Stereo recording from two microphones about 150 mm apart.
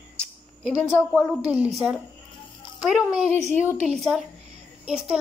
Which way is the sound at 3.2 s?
50° right (ahead or behind).